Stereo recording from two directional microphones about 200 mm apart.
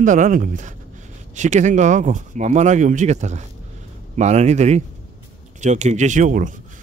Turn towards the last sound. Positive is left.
turn(degrees=-40)  # may be behind; listen again after turning